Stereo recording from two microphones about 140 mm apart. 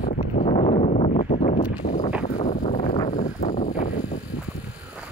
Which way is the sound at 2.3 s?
70° left (ahead or behind).